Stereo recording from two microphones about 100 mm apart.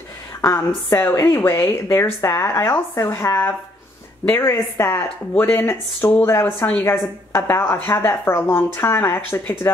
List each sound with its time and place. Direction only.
0.8 s speech: 30° left (ahead or behind)